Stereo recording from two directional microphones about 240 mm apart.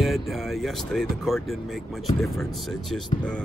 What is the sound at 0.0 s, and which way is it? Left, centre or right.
Speech, centre.